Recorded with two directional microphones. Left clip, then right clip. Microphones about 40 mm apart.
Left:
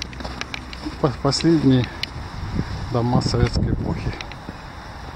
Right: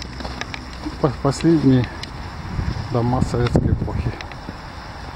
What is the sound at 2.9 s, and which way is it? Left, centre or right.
Speech, centre.